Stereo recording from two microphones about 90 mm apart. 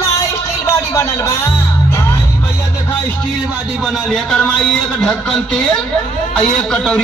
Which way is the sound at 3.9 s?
5° left (ahead or behind).